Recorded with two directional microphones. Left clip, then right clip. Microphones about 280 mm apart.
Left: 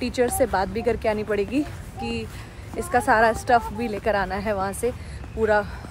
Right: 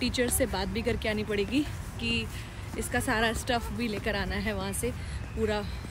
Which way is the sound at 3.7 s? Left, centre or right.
Centre.